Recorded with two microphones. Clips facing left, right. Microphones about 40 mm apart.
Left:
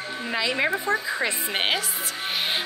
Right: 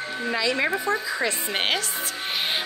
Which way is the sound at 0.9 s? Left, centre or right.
Left.